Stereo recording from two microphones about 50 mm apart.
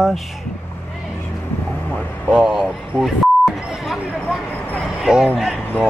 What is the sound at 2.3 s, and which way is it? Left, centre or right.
Speech, right.